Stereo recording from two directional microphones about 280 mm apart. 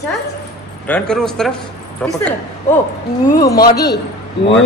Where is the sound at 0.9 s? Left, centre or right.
Centre.